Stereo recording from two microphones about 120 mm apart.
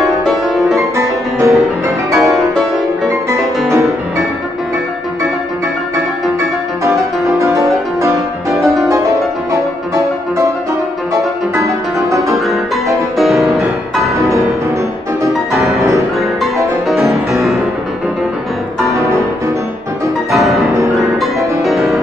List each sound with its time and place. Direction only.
0.0 s music: centre (ahead or behind)
0.7 s music: 25° right (ahead or behind)
2.1 s music: centre (ahead or behind)
3.1 s music: 25° right (ahead or behind)
7.3 s music: 25° right (ahead or behind)
11.5 s music: 25° right (ahead or behind)
13.2 s music: centre (ahead or behind)
15.3 s music: centre (ahead or behind)
15.8 s music: 25° right (ahead or behind)
16.8 s music: centre (ahead or behind)
18.9 s music: 25° right (ahead or behind)
20.2 s music: centre (ahead or behind)